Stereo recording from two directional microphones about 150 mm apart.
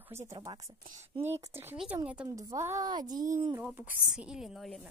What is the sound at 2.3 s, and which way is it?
Speech, 20° right (ahead or behind).